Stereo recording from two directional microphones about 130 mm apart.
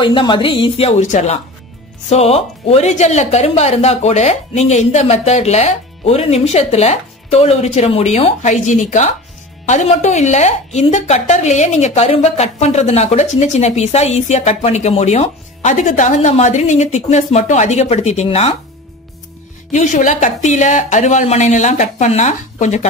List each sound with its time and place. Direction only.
0.0 s a woman's voice: 40° left (ahead or behind)
1.0 s speech: 65° left (ahead or behind)
2.0 s speech: 50° left (ahead or behind)
19.7 s speech: 70° left (ahead or behind)